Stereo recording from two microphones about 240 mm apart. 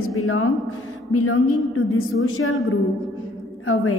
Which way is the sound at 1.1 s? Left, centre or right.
Left.